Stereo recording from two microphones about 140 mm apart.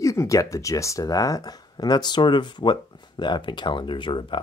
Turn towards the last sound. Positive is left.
turn(degrees=35)  # may be behind; listen again after turning